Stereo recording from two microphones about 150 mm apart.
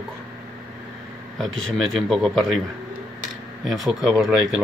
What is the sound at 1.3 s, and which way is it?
Speech, centre (ahead or behind).